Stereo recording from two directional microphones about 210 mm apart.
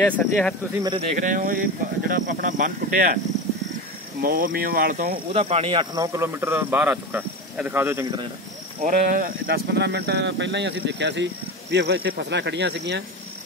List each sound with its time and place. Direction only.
0.0 s speech: 5° left (ahead or behind)
1.1 s speech: 40° right (ahead or behind)
4.2 s speech: 45° right (ahead or behind)
5.3 s speech: 30° right (ahead or behind); by 8.1 s 10° right (ahead or behind)
8.8 s speech: 40° right (ahead or behind)